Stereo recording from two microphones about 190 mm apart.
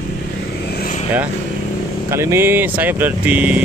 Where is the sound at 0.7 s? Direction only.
55° left (ahead or behind).